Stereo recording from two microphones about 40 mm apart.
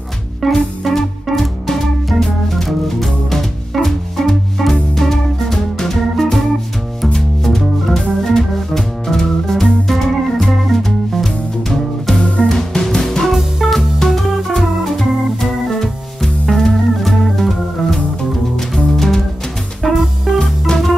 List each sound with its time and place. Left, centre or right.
0.4 s music: centre
8.0 s organ: centre
12.2 s music: centre
13.2 s music: centre
13.7 s music: centre
14.6 s organ: centre
18.9 s music: centre
19.8 s music: centre
20.7 s music: left